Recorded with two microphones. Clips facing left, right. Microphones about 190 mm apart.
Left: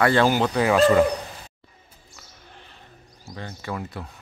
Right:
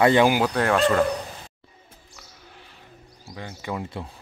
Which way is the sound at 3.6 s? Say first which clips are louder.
Right 1 dB; 15° right (ahead or behind).